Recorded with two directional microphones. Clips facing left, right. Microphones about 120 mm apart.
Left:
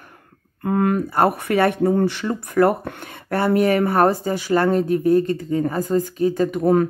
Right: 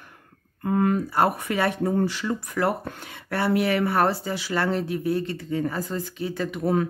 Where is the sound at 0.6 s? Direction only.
60° left (ahead or behind).